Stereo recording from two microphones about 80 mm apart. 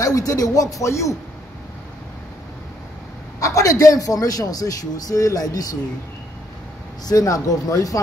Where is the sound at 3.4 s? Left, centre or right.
Left.